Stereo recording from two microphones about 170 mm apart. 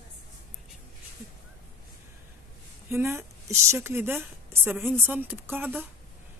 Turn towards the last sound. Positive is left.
turn(degrees=-10)  # may be behind; listen again after turning